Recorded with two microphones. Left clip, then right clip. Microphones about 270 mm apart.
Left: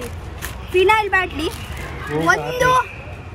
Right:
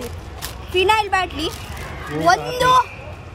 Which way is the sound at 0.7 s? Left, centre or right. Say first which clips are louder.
Left 2 dB; centre.